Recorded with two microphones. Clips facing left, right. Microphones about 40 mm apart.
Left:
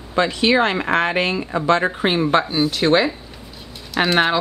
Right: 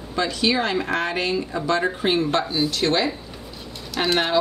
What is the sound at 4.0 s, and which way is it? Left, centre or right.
Speech, left.